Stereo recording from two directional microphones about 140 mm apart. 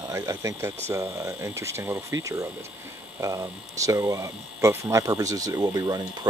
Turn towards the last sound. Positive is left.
turn(degrees=-25)  # may be behind; listen again after turning